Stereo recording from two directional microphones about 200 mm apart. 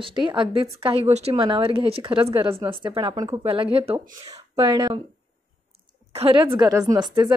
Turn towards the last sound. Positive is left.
turn(degrees=-20)  # may be behind; listen again after turning